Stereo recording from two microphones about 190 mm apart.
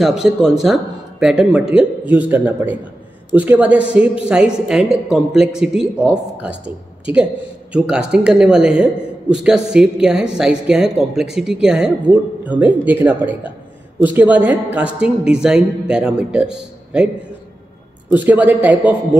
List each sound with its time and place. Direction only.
0.0 s a woman's voice: centre (ahead or behind)
18.1 s a man's voice: 10° right (ahead or behind)